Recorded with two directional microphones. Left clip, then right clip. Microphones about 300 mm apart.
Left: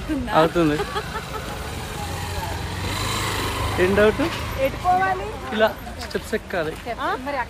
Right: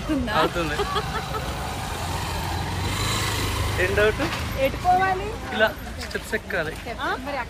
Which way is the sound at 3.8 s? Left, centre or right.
Left.